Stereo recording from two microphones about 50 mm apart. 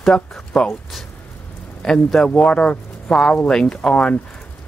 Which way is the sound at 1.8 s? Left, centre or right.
Centre.